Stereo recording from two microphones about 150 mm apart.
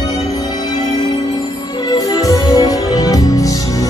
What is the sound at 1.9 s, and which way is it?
Music, 25° left (ahead or behind).